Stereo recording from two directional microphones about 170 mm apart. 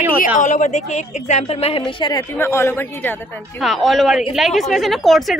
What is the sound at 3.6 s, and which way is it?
Speech, centre (ahead or behind).